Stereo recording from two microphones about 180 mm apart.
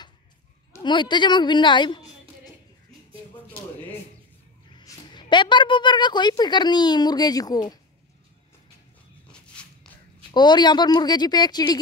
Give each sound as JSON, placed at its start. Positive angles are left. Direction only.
{"t": 0.7, "sound": "a man's voice", "side_deg": 25}
{"t": 4.7, "sound": "a woman's voice", "side_deg": 25}
{"t": 9.3, "sound": "a sound", "side_deg": 5}
{"t": 10.3, "sound": "a woman's voice", "side_deg": 25}